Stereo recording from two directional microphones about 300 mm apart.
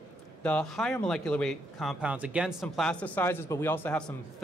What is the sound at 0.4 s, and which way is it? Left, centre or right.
Speech, centre.